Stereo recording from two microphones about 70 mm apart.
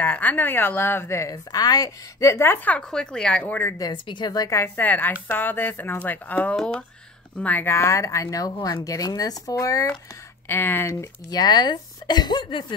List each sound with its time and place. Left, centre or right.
0.0 s a woman's voice: left
1.3 s a woman's voice: left
2.4 s a woman's voice: left
2.9 s speech: centre
3.4 s speech: left
3.7 s speech: left
4.7 s speech: left
6.5 s speech: centre
7.3 s speech: left
7.7 s a woman's voice: left
10.5 s a woman's voice: left
11.2 s speech: left